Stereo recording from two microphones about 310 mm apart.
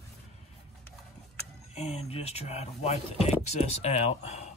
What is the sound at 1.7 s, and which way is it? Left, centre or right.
Speech, centre.